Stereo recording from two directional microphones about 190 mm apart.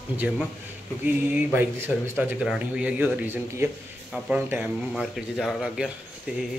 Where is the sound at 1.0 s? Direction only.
10° right (ahead or behind).